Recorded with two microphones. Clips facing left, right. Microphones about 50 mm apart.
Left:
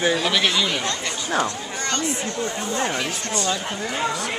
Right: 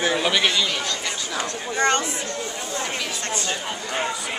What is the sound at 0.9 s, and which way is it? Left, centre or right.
Chatter, left.